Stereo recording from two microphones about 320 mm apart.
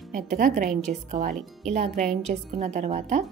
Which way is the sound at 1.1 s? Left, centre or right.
Right.